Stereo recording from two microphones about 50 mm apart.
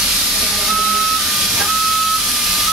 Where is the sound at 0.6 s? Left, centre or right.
Centre.